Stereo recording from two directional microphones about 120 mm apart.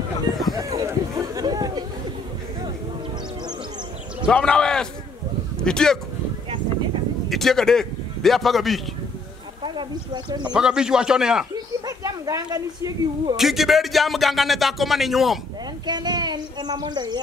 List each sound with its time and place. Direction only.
0.6 s chatter: 30° right (ahead or behind)
4.3 s a man's voice: 5° left (ahead or behind)
7.2 s a man's voice: centre (ahead or behind)
9.6 s speech: 40° right (ahead or behind)
10.5 s speech: 5° right (ahead or behind)
11.5 s speech: 30° right (ahead or behind)
13.4 s speech: centre (ahead or behind)
15.9 s speech: 35° right (ahead or behind)